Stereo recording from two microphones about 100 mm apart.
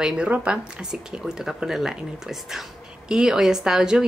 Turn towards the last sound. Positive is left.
turn(degrees=-5)  # may be behind; listen again after turning